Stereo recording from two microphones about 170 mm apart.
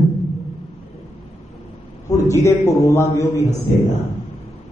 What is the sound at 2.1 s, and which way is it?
A man's voice, 20° left (ahead or behind).